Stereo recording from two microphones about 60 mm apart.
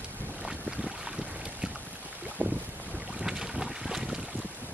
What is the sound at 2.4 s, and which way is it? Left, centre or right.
Boat, right.